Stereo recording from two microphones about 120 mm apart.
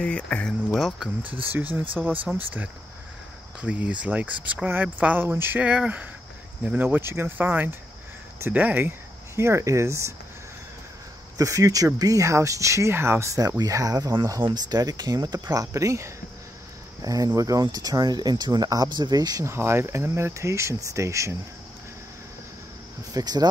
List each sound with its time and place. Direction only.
0.0 s speech: 10° left (ahead or behind)
0.7 s speech: centre (ahead or behind)
1.5 s speech: 15° right (ahead or behind)
11.3 s speech: 30° right (ahead or behind)
19.5 s speech: 20° right (ahead or behind)
23.1 s speech: 35° right (ahead or behind)